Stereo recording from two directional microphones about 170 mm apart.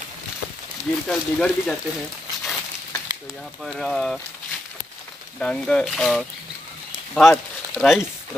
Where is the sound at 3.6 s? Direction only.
Centre (ahead or behind).